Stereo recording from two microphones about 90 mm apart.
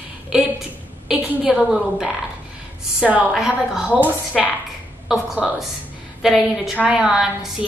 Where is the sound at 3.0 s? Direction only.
15° right (ahead or behind).